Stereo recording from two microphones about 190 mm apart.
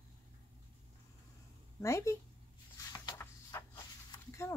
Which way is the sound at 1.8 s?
15° left (ahead or behind).